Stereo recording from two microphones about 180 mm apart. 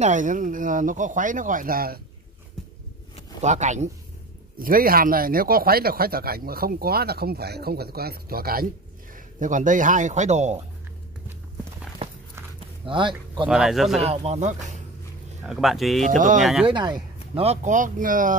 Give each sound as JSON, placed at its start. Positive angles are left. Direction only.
{"t": 0.0, "sound": "speech", "side_deg": -45}
{"t": 3.4, "sound": "speech", "side_deg": -40}
{"t": 4.6, "sound": "speech", "side_deg": -50}
{"t": 9.1, "sound": "speech", "side_deg": -45}
{"t": 12.8, "sound": "speech", "side_deg": -25}
{"t": 13.5, "sound": "speech", "side_deg": 0}
{"t": 14.0, "sound": "speech", "side_deg": -35}
{"t": 15.4, "sound": "speech", "side_deg": 0}
{"t": 16.6, "sound": "speech", "side_deg": -25}
{"t": 17.4, "sound": "speech", "side_deg": -40}